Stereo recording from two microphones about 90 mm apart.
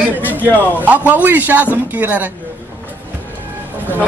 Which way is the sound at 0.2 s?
20° right (ahead or behind).